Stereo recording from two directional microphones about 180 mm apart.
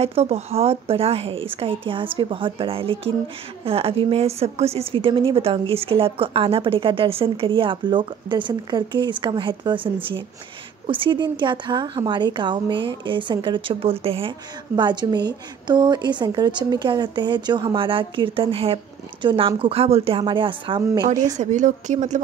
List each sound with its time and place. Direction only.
0.0 s a woman's voice: 35° right (ahead or behind)
10.9 s a woman's voice: 25° right (ahead or behind)
21.4 s a woman's voice: 40° right (ahead or behind)